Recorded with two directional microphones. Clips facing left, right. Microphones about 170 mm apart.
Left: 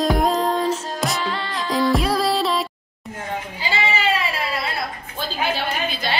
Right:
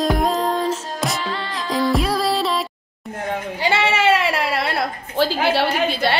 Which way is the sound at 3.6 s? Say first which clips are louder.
Right 5 dB; 80° right.